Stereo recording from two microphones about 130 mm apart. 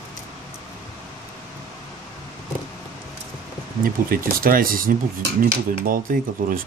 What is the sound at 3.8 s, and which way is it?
Speech, 90° right.